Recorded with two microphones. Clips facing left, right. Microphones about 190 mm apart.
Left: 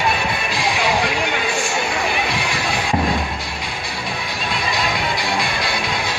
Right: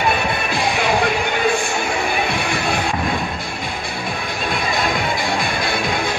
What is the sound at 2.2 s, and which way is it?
Music, 55° right (ahead or behind).